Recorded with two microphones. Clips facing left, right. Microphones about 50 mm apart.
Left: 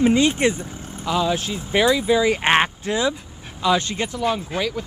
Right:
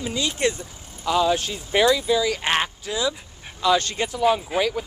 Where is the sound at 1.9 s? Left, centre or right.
Left.